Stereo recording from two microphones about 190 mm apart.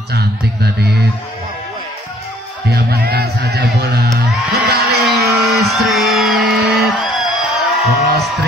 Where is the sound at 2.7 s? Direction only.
55° right (ahead or behind).